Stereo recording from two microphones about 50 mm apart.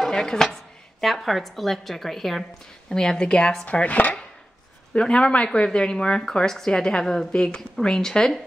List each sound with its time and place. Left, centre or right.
0.0 s a woman's voice: centre
3.6 s chopping: left
4.9 s speech: centre